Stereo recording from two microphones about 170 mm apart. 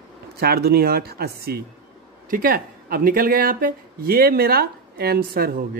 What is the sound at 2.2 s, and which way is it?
Speech, 55° right (ahead or behind).